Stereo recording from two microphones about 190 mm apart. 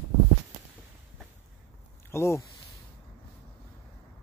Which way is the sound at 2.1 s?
15° left (ahead or behind).